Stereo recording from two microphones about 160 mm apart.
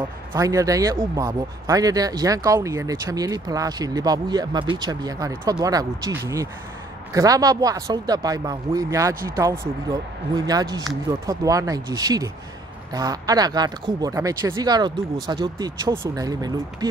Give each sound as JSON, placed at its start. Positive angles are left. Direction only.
{"t": 0.3, "sound": "speech", "side_deg": -20}